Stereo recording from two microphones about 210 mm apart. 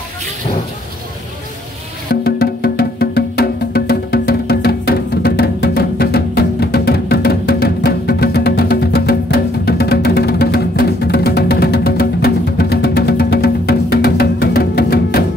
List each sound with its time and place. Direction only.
2.2 s music: 45° left (ahead or behind)